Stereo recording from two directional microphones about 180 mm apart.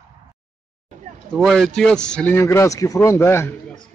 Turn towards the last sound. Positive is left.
turn(degrees=15)  # may be behind; listen again after turning